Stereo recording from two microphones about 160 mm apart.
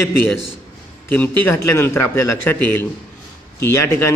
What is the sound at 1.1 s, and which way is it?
A man's voice, 15° left (ahead or behind).